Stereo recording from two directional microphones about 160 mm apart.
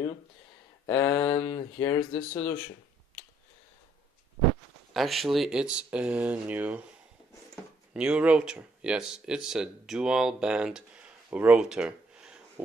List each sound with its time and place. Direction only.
0.8 s speech: 25° left (ahead or behind)
4.9 s speech: centre (ahead or behind)
7.9 s speech: 5° right (ahead or behind)